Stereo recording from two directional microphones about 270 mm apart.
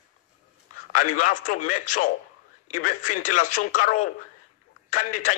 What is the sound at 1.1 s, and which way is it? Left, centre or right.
A man's voice, left.